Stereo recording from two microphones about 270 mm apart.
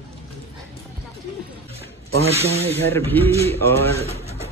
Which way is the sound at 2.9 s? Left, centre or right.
Centre.